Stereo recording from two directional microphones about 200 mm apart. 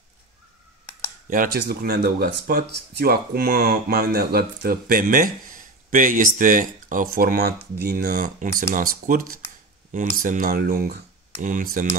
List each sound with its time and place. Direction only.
1.3 s speech: 45° right (ahead or behind)